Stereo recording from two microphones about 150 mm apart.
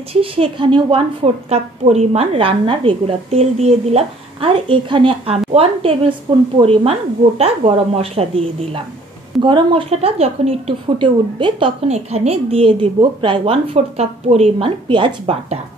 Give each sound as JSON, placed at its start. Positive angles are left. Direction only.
{"t": 0.1, "sound": "a woman's voice", "side_deg": -40}
{"t": 11.0, "sound": "a woman's voice", "side_deg": -35}
{"t": 11.9, "sound": "a woman's voice", "side_deg": -45}
{"t": 14.9, "sound": "a woman's voice", "side_deg": -30}